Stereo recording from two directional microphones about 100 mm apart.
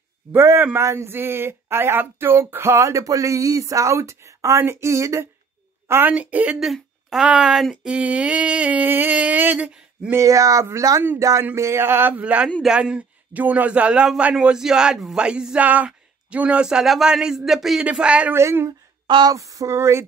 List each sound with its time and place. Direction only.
0.3 s speech: 25° right (ahead or behind)
6.6 s speech: centre (ahead or behind); by 10.2 s 15° right (ahead or behind)
10.2 s speech: 35° right (ahead or behind); by 18.3 s 10° right (ahead or behind)
18.3 s speech: 25° right (ahead or behind)
19.0 s a sound: 50° right (ahead or behind)
19.3 s speech: 30° right (ahead or behind)